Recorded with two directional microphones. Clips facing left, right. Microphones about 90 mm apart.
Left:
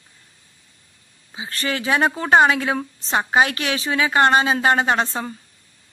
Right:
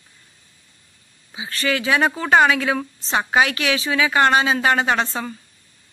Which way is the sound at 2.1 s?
25° left (ahead or behind).